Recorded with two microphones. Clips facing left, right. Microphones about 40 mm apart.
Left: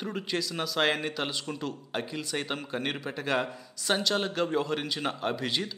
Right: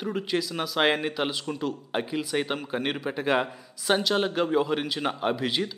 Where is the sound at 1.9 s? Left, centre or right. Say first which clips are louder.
Right 5 dB; centre.